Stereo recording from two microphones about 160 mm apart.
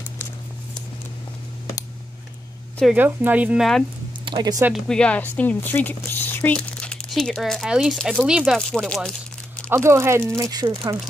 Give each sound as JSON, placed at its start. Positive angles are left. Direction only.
{"t": 2.8, "sound": "speech", "side_deg": -10}
{"t": 4.2, "sound": "speech", "side_deg": -30}
{"t": 4.8, "sound": "speech", "side_deg": 5}
{"t": 9.7, "sound": "speech", "side_deg": -15}